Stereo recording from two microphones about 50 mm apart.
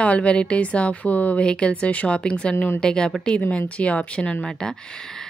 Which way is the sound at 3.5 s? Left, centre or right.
Left.